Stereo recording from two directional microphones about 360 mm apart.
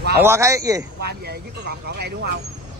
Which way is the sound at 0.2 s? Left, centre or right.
Centre.